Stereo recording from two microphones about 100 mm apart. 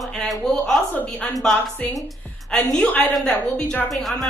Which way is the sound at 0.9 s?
15° left (ahead or behind).